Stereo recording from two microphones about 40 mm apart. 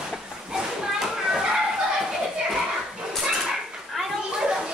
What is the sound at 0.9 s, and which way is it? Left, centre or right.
Children playing, centre.